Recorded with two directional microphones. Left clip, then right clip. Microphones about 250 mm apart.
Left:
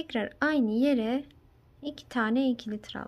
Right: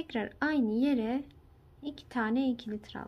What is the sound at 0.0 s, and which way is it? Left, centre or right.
A woman's voice, centre.